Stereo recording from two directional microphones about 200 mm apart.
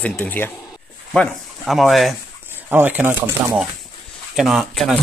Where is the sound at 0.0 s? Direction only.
10° left (ahead or behind).